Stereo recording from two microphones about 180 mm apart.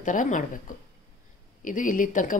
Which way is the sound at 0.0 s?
45° left (ahead or behind).